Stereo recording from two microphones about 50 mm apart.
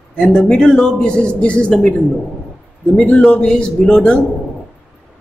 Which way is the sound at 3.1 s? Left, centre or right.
Left.